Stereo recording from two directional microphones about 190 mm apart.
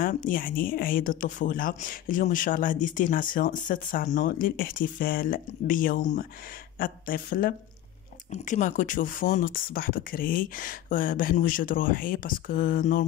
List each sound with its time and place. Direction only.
0.0 s speech: 45° left (ahead or behind)